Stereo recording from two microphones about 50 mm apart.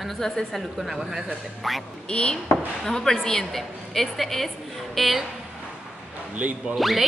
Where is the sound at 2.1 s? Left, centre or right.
Centre.